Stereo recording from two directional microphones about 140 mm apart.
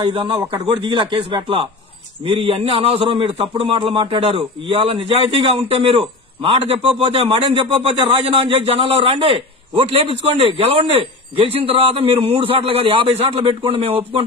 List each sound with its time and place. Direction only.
0.0 s a man's voice: 35° right (ahead or behind)